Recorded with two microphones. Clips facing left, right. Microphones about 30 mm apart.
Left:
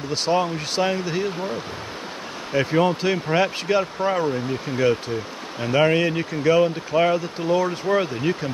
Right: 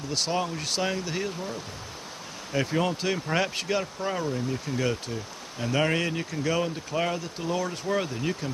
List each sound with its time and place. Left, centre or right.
0.1 s speech: centre
2.5 s speech: left